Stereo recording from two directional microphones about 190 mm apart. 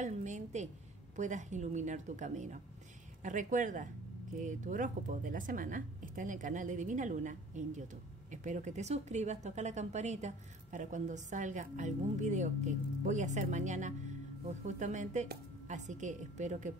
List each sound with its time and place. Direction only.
0.0 s speech: 40° right (ahead or behind)